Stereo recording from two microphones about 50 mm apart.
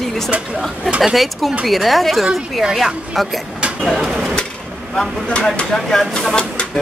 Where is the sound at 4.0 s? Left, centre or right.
Centre.